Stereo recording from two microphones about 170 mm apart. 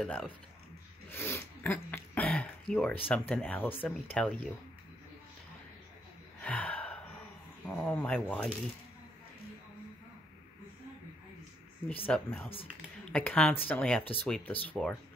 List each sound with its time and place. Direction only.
0.0 s speech: 5° left (ahead or behind)
1.1 s a sound: 15° left (ahead or behind)
3.1 s speech: 10° left (ahead or behind)
6.4 s gasp: 10° left (ahead or behind)
7.6 s speech: 5° left (ahead or behind)
12.1 s speech: 10° left (ahead or behind)